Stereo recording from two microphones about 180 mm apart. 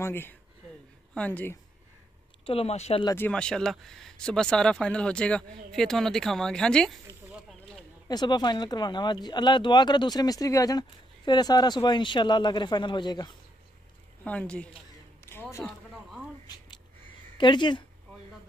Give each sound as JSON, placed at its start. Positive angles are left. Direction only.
{"t": 0.0, "sound": "a woman's voice", "side_deg": 10}
{"t": 2.4, "sound": "speech", "side_deg": 35}
{"t": 3.1, "sound": "speech", "side_deg": 10}
{"t": 7.3, "sound": "snake", "side_deg": 0}
{"t": 8.1, "sound": "speech", "side_deg": 25}
{"t": 14.2, "sound": "a woman's voice", "side_deg": 10}
{"t": 15.6, "sound": "a sound", "side_deg": 0}
{"t": 16.4, "sound": "a sound", "side_deg": 25}
{"t": 17.4, "sound": "speech", "side_deg": 25}